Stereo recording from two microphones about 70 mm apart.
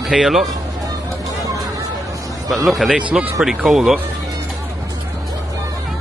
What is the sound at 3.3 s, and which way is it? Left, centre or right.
Speech, centre.